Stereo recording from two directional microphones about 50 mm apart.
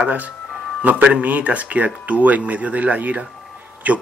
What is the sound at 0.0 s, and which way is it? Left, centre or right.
Speech, right.